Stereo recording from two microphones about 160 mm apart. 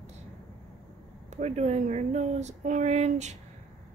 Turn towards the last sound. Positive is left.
turn(degrees=-45)  # may be behind; listen again after turning